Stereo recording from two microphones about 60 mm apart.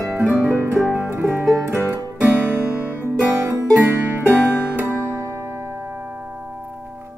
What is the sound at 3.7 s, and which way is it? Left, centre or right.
Music, right.